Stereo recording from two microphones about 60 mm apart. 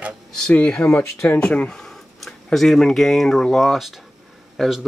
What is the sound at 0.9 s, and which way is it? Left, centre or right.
Speech, left.